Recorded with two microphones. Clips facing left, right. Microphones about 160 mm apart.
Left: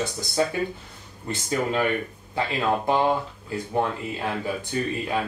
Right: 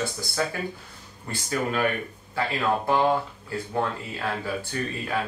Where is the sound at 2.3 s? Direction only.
20° left (ahead or behind).